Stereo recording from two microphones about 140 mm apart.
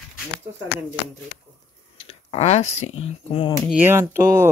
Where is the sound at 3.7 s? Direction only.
15° right (ahead or behind).